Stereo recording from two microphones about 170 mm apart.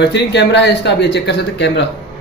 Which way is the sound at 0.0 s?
90° left.